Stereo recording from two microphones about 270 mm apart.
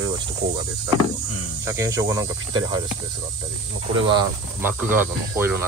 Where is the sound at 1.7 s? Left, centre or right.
Centre.